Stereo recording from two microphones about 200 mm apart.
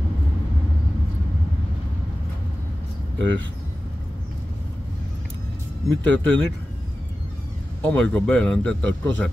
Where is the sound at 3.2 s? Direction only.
65° right (ahead or behind).